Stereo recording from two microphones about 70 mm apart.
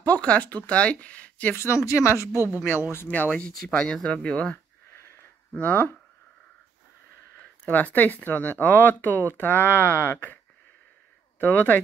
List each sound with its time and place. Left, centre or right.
0.0 s speech: centre
1.9 s speech: left
2.3 s speech: right
3.1 s speech: centre
5.5 s speech: left
7.6 s speech: left